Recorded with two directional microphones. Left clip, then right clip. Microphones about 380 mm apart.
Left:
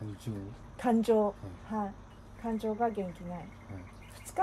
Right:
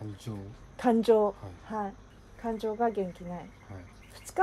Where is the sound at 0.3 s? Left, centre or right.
Centre.